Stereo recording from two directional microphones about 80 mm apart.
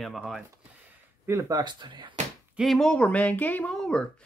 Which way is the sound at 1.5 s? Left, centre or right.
Right.